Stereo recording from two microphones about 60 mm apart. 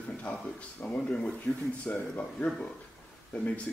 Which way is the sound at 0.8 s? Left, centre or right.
Left.